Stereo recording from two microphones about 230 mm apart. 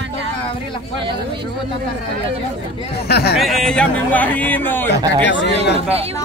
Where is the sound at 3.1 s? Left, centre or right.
Left.